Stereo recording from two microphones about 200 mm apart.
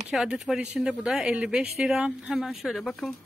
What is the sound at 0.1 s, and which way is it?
Speech, centre (ahead or behind).